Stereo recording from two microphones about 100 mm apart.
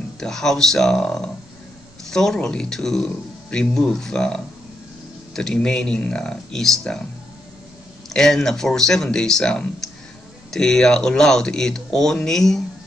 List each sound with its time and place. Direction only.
0.2 s speech: 5° left (ahead or behind)
8.1 s speech: 5° left (ahead or behind)